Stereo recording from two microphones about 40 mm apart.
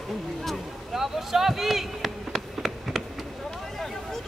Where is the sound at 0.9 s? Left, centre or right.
Centre.